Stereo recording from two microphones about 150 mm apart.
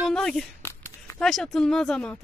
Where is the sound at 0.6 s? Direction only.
20° left (ahead or behind).